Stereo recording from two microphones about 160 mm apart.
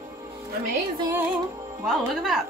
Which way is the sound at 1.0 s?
15° right (ahead or behind).